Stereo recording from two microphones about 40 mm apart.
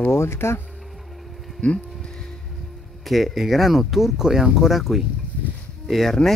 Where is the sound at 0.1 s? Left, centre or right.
Left.